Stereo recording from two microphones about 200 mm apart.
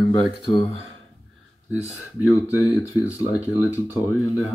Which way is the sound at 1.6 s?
Centre (ahead or behind).